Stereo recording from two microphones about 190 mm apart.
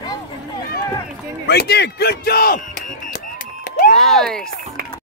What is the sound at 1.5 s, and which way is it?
Speech, 60° left (ahead or behind).